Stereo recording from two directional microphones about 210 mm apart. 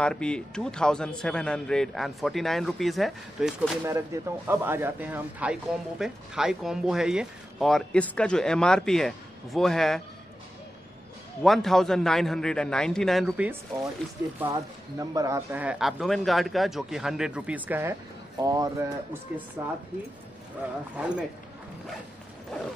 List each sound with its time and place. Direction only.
0.0 s speech: 5° left (ahead or behind)
11.4 s speech: centre (ahead or behind)
14.4 s speech: 15° right (ahead or behind)